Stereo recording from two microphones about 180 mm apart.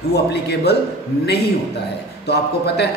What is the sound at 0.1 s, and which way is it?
A woman's voice, 65° left (ahead or behind).